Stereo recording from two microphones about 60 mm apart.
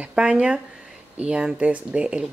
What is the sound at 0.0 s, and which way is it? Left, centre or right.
Speech, centre.